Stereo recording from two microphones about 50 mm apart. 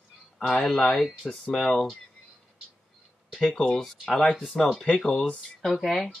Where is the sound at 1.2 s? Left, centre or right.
Centre.